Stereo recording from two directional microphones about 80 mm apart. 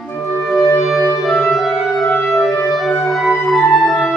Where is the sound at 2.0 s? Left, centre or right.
Centre.